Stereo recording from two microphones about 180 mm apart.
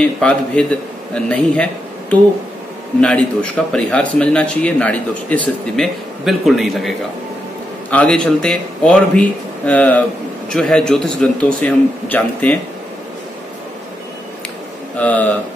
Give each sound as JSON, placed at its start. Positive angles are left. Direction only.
{"t": 0.0, "sound": "a man's voice", "side_deg": 5}
{"t": 15.0, "sound": "speech", "side_deg": 10}